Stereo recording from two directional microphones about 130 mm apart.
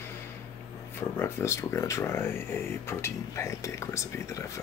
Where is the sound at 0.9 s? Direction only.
15° left (ahead or behind).